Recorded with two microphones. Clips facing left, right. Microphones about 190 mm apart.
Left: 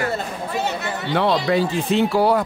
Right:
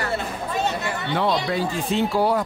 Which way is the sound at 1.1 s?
80° left.